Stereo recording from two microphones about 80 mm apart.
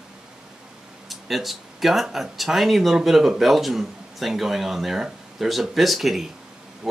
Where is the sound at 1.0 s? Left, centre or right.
Centre.